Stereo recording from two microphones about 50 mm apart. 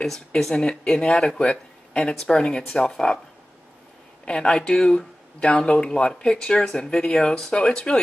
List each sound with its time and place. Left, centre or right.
0.4 s speech: centre
4.3 s speech: centre